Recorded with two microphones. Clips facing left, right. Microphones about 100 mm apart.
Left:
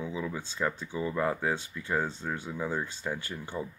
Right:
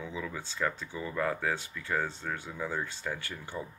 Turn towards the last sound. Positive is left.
turn(degrees=20)  # may be behind; listen again after turning